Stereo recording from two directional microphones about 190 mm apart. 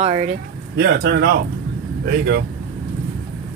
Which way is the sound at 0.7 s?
60° right (ahead or behind).